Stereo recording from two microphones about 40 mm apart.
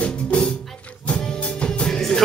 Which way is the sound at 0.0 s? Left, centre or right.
Left.